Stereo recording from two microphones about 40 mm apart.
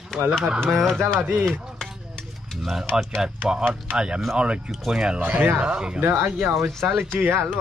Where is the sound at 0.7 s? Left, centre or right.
Centre.